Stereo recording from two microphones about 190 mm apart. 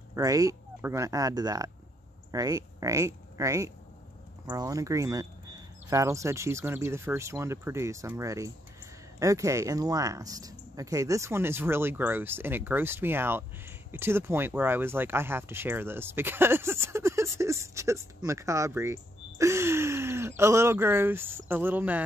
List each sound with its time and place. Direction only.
0.1 s speech: 15° right (ahead or behind)